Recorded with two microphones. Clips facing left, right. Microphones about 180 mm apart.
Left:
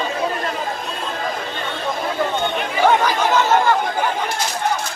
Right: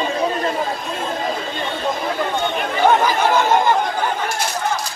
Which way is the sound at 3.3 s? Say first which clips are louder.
Left 1 dB; 15° right (ahead or behind).